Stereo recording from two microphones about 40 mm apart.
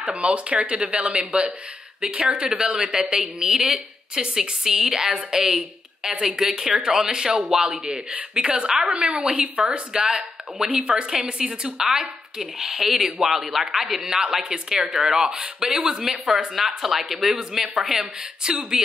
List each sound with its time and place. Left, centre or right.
0.0 s speech: right
11.8 s speech: centre
18.4 s speech: right